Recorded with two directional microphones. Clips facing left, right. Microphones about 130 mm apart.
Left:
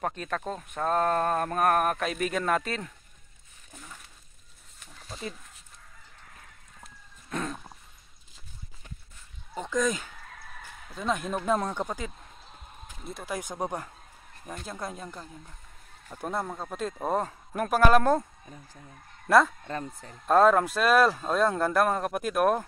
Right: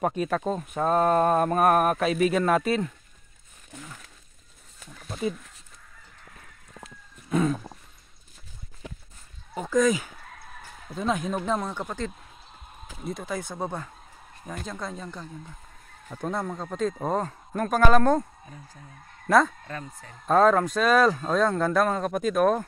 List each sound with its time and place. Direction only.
0.0 s speech: 10° right (ahead or behind)
5.0 s a sound: 10° right (ahead or behind)
7.2 s a sound: 5° right (ahead or behind)
8.8 s a sound: 90° right
9.5 s speech: 5° right (ahead or behind)
11.1 s speech: centre (ahead or behind)
13.0 s speech: 5° left (ahead or behind)
13.4 s speech: 15° left (ahead or behind)
19.2 s speech: 5° left (ahead or behind)